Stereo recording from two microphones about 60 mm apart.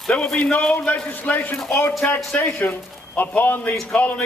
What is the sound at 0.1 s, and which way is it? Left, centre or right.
Speech, centre.